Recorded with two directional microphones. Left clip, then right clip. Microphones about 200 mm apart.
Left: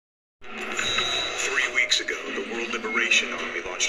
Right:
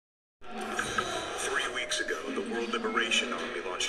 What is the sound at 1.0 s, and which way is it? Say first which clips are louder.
Music: left 8 dB; 30° right (ahead or behind).